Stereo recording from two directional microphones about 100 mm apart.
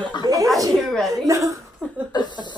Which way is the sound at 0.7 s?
Centre (ahead or behind).